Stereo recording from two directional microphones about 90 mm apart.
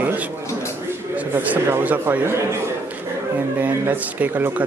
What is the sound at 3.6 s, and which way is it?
A man's voice, 20° right (ahead or behind).